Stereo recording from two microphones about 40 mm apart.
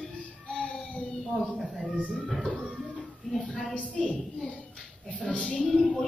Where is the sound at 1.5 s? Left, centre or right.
Centre.